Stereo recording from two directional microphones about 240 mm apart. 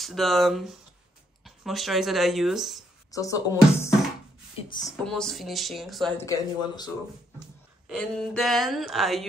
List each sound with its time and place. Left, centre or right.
0.0 s speech: centre
3.1 s speech: centre
5.0 s speech: centre
6.2 s speech: centre
7.9 s speech: centre